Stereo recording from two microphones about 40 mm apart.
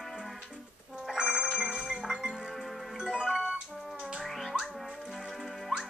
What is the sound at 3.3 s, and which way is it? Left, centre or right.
Music, centre.